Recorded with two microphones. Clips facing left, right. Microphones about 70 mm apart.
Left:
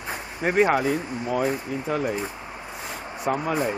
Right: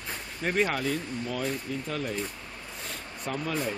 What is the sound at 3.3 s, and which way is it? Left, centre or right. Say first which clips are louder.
Speech: left 4 dB; centre.